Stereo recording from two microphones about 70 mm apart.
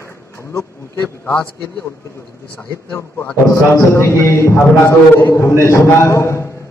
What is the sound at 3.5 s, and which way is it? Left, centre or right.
A man's voice, left.